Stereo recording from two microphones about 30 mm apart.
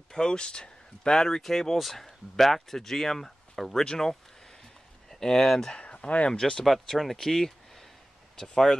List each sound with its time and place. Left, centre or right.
0.2 s speech: left
1.4 s speech: centre
5.1 s speech: centre
5.8 s speech: left
6.3 s speech: centre
6.6 s speech: centre